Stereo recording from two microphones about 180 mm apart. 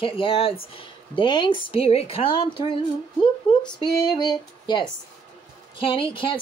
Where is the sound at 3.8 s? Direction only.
20° left (ahead or behind).